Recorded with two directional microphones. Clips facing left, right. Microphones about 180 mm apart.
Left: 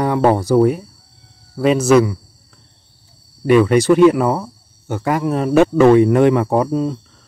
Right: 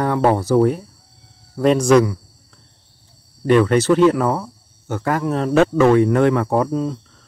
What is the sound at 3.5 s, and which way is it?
Speech, 10° left (ahead or behind).